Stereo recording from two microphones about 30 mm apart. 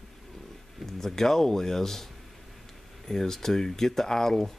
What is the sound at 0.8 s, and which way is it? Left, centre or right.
Speech, centre.